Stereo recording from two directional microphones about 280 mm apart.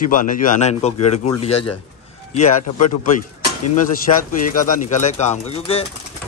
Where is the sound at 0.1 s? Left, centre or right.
Left.